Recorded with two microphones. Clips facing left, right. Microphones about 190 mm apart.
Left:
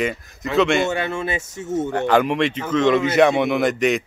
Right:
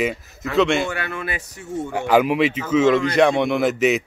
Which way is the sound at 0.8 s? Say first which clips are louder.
Left 4 dB; 25° left (ahead or behind).